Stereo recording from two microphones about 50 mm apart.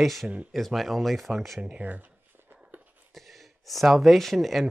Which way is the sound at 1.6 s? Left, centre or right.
Right.